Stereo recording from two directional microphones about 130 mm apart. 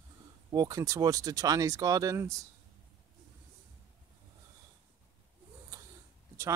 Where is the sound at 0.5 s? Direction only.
30° right (ahead or behind).